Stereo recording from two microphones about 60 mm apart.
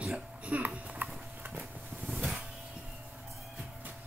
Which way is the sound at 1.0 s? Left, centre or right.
Right.